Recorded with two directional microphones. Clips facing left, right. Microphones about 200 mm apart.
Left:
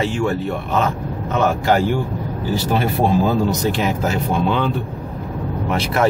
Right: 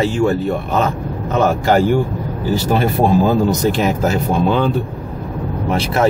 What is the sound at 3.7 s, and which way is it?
Speech, 40° right (ahead or behind).